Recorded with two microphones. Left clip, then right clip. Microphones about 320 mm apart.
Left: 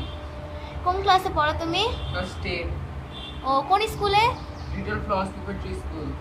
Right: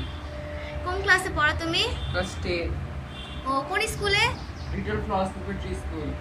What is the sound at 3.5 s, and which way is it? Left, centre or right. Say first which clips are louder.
Speech: left 5 dB; centre.